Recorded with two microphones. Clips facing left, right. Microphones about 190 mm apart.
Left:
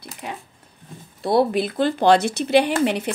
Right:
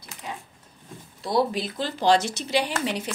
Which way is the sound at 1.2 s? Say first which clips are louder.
Left 6 dB; 60° left (ahead or behind).